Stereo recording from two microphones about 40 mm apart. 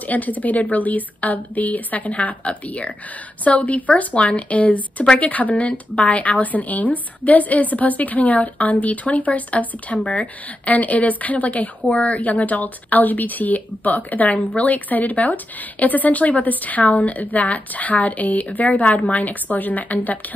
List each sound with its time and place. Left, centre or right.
0.0 s a woman's voice: left
10.6 s a woman's voice: left